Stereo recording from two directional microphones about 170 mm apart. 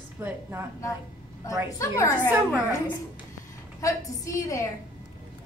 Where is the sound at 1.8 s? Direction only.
15° left (ahead or behind).